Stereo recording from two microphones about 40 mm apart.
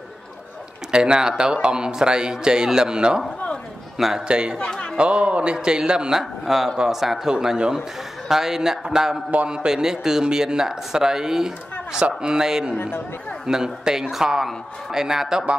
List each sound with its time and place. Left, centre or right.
0.9 s a man's voice: centre
4.3 s a man's voice: right
4.6 s music: left
4.9 s a man's voice: right; by 15.4 s centre